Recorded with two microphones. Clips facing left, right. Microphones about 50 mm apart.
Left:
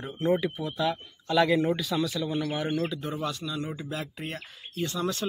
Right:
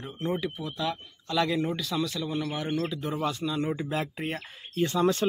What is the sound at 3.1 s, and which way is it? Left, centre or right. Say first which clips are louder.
Speech: right 3 dB; centre.